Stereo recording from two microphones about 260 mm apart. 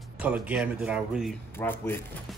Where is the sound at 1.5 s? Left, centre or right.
Centre.